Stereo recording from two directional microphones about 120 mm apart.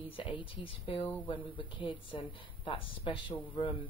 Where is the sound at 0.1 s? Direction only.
45° left (ahead or behind).